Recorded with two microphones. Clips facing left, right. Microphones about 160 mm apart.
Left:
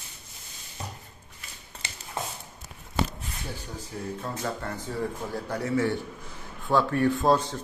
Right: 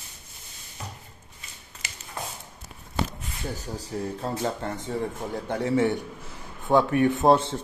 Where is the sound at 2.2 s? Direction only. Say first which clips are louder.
Left 2 dB; 25° left (ahead or behind).